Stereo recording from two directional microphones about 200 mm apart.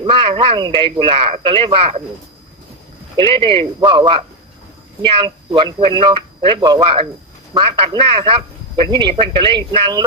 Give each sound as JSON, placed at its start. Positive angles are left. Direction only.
{"t": 0.0, "sound": "speech", "side_deg": -25}
{"t": 3.2, "sound": "speech", "side_deg": -25}